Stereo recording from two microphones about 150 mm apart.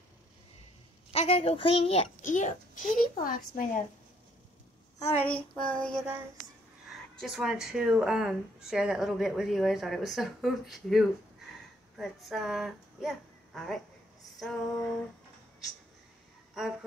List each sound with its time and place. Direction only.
1.1 s a child's voice: 40° left (ahead or behind)
2.2 s a woman's voice: 60° left (ahead or behind)
5.2 s child singing: 5° left (ahead or behind)
7.2 s speech: 5° right (ahead or behind)